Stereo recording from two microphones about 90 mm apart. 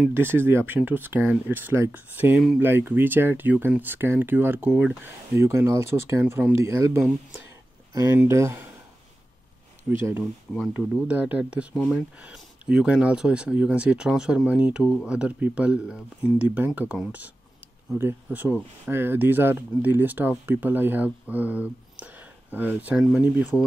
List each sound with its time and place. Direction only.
0.1 s speech: 25° right (ahead or behind)
9.8 s speech: 25° right (ahead or behind)
23.5 s speech: 15° left (ahead or behind)